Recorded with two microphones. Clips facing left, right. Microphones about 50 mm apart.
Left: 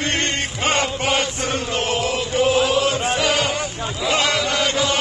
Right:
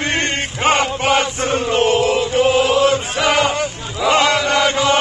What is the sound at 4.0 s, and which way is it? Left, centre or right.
Chant, right.